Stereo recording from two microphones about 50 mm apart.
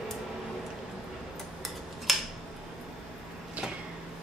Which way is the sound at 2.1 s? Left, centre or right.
Centre.